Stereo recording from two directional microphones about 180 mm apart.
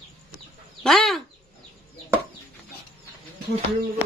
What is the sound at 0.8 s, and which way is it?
Speech, centre (ahead or behind).